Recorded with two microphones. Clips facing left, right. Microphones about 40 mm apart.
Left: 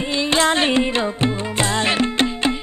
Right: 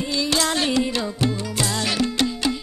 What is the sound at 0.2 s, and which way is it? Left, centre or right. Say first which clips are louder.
Music: left 5 dB; left.